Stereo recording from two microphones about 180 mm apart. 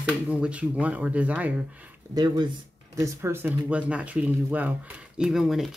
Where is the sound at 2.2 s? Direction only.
25° right (ahead or behind).